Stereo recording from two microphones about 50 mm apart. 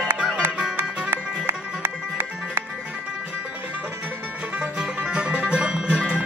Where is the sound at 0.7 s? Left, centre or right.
Right.